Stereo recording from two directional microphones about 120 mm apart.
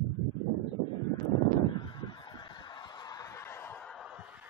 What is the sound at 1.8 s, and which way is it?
Honk, 40° left (ahead or behind).